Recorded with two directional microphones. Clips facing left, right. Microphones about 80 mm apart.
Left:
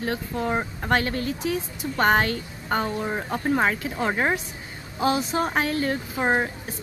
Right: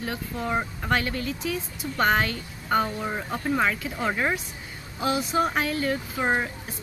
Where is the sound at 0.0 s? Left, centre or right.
Left.